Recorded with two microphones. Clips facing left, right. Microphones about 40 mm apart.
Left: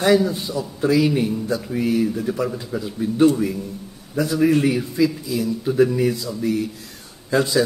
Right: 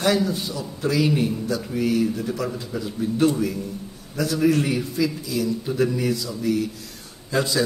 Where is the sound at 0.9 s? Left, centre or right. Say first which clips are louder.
Left 2 dB; centre.